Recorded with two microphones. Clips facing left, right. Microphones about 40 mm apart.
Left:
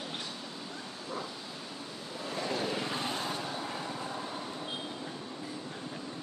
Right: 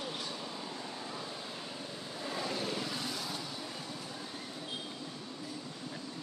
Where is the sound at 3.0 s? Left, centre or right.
Left.